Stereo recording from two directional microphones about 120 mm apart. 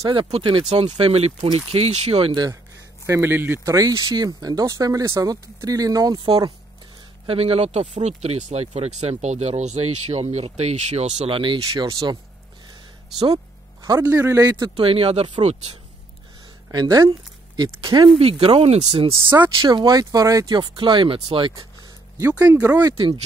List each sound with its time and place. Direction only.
0.3 s speech: 45° right (ahead or behind)
3.1 s speech: 20° right (ahead or behind)
7.2 s speech: 55° right (ahead or behind)
11.3 s speech: 45° right (ahead or behind)
11.7 s speech: 30° right (ahead or behind)
14.0 s speech: 15° right (ahead or behind)
14.3 s speech: 30° right (ahead or behind)
14.8 s speech: 50° right (ahead or behind)
16.7 s speech: 35° right (ahead or behind)
18.1 s speech: 50° right (ahead or behind)
19.2 s speech: 15° right (ahead or behind)
19.6 s speech: 35° right (ahead or behind)
22.3 s speech: 10° right (ahead or behind)
22.8 s speech: 40° right (ahead or behind)